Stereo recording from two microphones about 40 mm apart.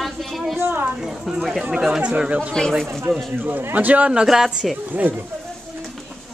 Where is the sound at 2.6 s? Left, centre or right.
Centre.